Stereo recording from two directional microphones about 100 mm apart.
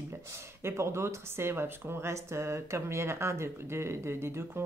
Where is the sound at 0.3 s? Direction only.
25° right (ahead or behind).